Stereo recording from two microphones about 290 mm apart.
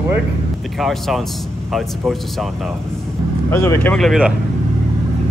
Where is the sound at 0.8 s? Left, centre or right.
Centre.